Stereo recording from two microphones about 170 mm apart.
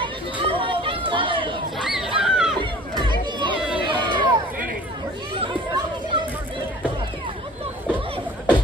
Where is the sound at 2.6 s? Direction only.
25° right (ahead or behind).